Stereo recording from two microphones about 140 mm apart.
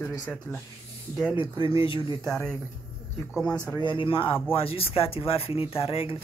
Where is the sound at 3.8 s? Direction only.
35° left (ahead or behind).